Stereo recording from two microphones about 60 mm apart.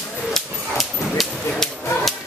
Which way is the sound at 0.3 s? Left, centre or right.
Centre.